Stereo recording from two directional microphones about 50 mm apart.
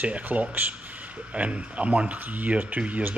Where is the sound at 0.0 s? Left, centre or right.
Right.